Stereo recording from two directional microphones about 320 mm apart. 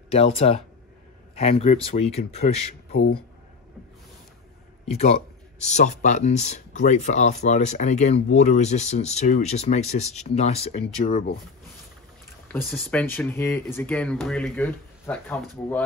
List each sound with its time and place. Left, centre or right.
0.2 s speech: centre
4.8 s a man's voice: centre
12.5 s speech: centre